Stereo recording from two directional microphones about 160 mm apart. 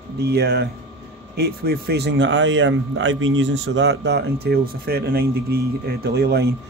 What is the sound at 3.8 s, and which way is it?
Speech, 90° right.